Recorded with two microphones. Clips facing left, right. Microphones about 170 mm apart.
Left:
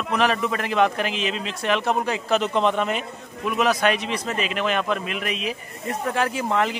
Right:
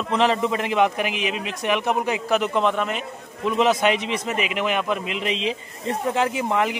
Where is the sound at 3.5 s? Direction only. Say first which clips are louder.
Right 2 dB; 25° right (ahead or behind).